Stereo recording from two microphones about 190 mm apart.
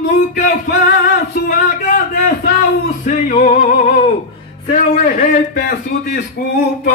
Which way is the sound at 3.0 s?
40° left (ahead or behind).